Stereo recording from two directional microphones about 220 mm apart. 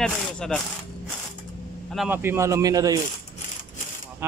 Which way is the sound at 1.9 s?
10° right (ahead or behind).